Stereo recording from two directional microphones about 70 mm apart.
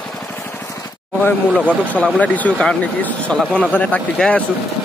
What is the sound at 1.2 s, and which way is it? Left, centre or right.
Speech, centre.